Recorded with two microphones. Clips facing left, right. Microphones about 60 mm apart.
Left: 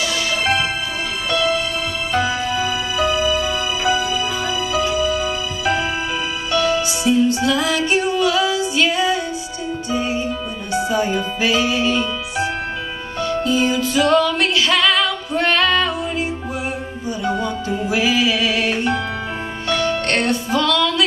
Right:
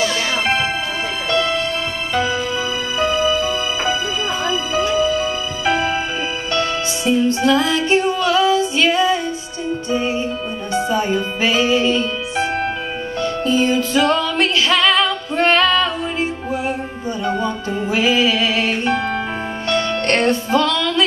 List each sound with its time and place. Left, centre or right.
0.0 s music: right
3.0 s music: centre
3.3 s music: right
6.5 s music: right
13.5 s music: right
20.1 s music: right